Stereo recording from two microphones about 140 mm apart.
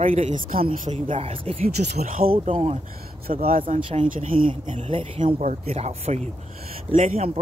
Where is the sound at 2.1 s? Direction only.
90° right.